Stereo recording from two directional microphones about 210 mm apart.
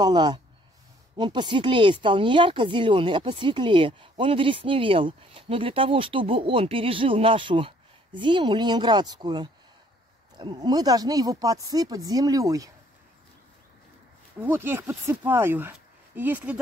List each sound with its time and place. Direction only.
0.0 s speech: 20° right (ahead or behind)
14.4 s speech: 10° right (ahead or behind)